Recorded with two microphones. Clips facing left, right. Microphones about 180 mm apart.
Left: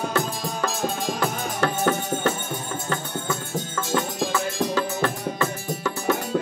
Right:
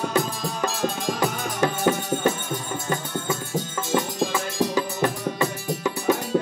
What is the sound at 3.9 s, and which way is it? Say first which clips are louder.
Music: right 1 dB; 15° right (ahead or behind).